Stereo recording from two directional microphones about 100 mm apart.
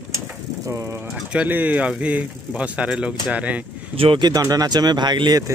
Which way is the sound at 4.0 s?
65° right (ahead or behind).